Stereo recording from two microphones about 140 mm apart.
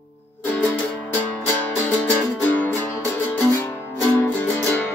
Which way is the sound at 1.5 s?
15° left (ahead or behind).